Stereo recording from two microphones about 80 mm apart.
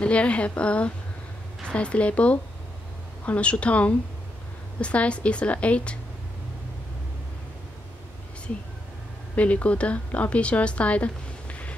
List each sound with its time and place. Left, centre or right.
0.0 s a woman's voice: centre
9.3 s a woman's voice: centre